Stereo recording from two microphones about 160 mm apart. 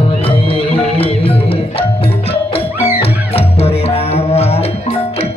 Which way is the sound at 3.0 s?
40° left (ahead or behind).